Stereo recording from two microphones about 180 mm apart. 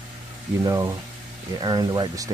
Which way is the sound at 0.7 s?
20° right (ahead or behind).